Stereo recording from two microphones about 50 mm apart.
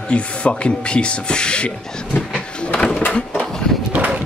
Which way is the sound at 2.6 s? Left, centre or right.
Left.